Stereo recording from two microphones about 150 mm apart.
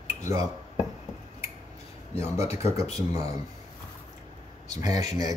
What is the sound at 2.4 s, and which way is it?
Speech, 20° right (ahead or behind).